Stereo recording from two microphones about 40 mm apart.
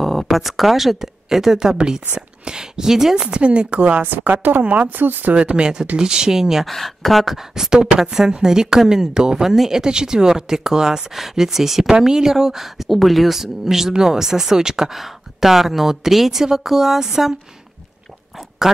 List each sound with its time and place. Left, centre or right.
0.0 s a woman's voice: centre
3.3 s a woman's voice: right
4.0 s speech: right
5.3 s a woman's voice: right
5.9 s a woman's voice: centre
6.6 s speech: centre
7.5 s a woman's voice: centre